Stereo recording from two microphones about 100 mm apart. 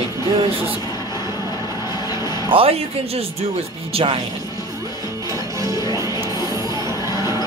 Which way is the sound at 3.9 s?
70° right (ahead or behind).